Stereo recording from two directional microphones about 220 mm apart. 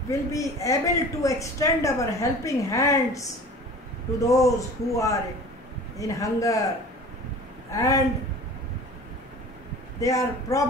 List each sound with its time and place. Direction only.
0.1 s a woman's voice: 15° left (ahead or behind)
4.3 s a woman's voice: 15° left (ahead or behind)
7.7 s a woman's voice: 15° left (ahead or behind)
9.9 s a woman's voice: 15° left (ahead or behind)